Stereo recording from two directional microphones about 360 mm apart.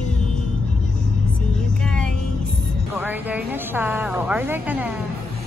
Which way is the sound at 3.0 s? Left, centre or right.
Centre.